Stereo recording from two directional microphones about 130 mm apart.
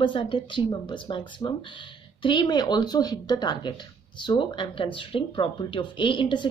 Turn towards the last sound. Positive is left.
turn(degrees=40)  # may be behind; listen again after turning